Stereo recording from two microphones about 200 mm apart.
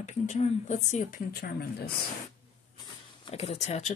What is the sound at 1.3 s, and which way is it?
Speech, 50° left (ahead or behind).